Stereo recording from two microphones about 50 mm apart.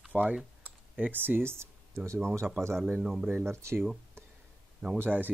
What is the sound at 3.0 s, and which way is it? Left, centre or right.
Speech, centre.